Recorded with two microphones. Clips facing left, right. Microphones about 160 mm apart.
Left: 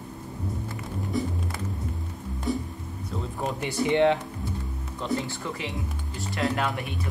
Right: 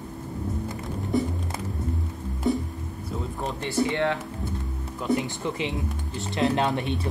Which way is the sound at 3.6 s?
15° left (ahead or behind).